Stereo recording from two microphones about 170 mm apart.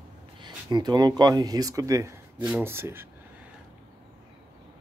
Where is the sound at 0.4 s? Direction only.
25° right (ahead or behind).